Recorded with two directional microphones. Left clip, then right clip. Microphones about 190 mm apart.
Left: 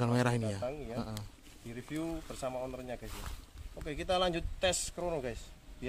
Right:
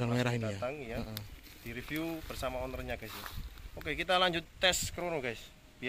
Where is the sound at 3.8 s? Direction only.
20° left (ahead or behind).